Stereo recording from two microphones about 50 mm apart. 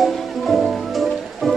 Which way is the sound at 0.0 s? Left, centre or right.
Centre.